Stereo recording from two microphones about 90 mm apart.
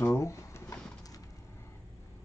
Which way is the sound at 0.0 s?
35° left (ahead or behind).